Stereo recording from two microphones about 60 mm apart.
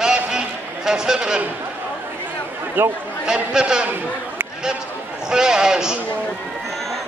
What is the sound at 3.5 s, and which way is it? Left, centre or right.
Speech, centre.